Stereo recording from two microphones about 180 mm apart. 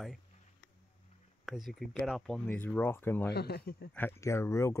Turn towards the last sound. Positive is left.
turn(degrees=15)  # may be behind; listen again after turning